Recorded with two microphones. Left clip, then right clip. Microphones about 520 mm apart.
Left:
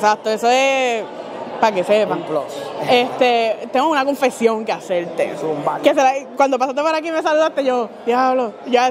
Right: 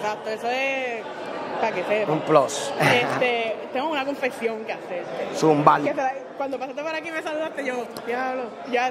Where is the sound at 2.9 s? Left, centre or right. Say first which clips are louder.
Left 7 dB; left.